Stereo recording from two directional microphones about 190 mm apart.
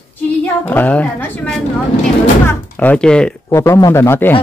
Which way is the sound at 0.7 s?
10° left (ahead or behind).